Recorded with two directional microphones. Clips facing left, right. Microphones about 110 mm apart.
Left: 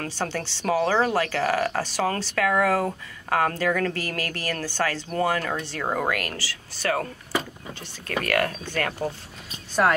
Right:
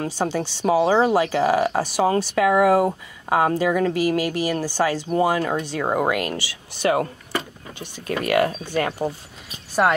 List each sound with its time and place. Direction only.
0.0 s speech: 15° right (ahead or behind)